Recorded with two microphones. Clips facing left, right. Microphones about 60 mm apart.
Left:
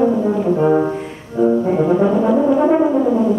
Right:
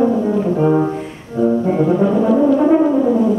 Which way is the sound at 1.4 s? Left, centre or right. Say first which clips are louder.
Left 1 dB; left.